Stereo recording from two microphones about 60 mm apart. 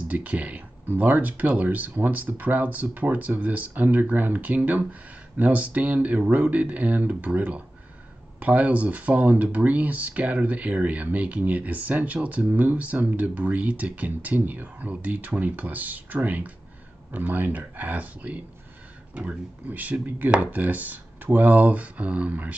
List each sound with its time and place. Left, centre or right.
0.1 s speech: right